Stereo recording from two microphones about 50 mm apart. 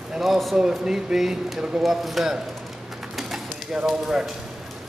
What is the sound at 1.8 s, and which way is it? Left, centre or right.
Speech, centre.